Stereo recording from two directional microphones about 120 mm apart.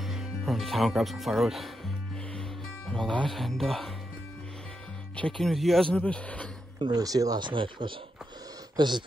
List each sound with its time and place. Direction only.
0.0 s music: centre (ahead or behind)
2.9 s speech: 5° left (ahead or behind)
5.1 s a man's voice: 5° left (ahead or behind)
6.8 s speech: 35° right (ahead or behind)